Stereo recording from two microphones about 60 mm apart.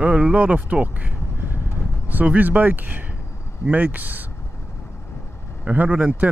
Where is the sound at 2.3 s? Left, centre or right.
Right.